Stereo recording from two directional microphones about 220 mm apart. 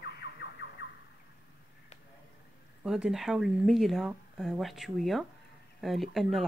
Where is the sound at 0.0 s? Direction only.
45° left (ahead or behind).